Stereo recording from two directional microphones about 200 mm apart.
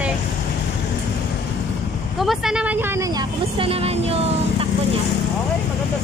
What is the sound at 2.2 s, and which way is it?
Vehicle, centre (ahead or behind).